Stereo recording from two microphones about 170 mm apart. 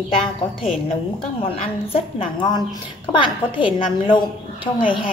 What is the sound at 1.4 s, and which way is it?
A woman's voice, 30° left (ahead or behind).